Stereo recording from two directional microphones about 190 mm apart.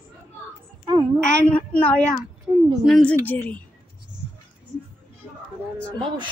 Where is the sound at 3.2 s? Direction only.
10° left (ahead or behind).